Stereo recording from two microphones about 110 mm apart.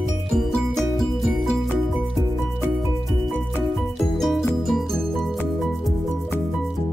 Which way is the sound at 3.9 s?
Centre (ahead or behind).